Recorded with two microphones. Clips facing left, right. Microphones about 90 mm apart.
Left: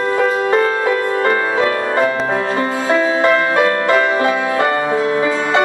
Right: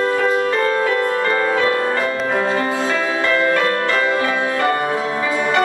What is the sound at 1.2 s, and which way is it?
Music, 25° left (ahead or behind).